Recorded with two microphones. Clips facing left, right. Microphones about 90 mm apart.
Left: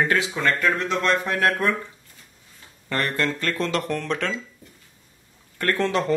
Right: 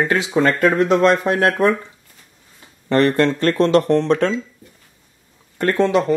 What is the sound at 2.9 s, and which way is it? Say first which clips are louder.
Speech: right 10 dB; 30° right (ahead or behind).